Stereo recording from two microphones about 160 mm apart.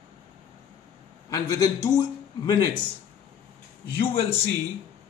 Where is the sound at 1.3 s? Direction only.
25° left (ahead or behind).